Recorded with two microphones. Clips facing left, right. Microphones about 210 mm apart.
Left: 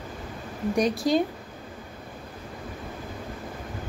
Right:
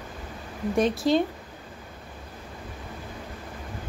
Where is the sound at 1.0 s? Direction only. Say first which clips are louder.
Right 1 dB; 40° left (ahead or behind).